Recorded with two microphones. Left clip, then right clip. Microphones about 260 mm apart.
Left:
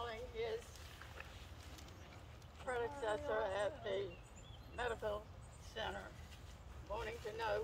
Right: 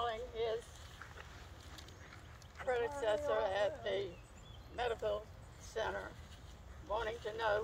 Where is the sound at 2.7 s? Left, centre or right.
Right.